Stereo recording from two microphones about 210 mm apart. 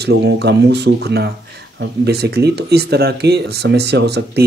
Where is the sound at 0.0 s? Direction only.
55° right (ahead or behind).